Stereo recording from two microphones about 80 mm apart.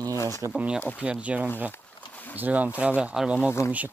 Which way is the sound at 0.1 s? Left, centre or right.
Left.